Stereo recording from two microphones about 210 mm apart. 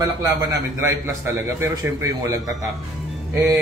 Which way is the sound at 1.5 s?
15° right (ahead or behind).